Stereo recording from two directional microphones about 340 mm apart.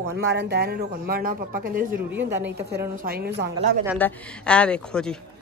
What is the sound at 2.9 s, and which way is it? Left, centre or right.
Speech, right.